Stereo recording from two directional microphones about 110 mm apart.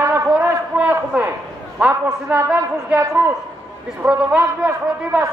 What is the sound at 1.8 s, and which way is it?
A man's voice, 15° right (ahead or behind).